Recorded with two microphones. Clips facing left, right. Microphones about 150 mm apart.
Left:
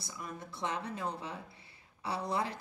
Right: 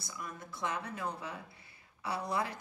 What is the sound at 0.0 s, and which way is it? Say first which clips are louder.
A woman's voice: left 1 dB; 30° left (ahead or behind).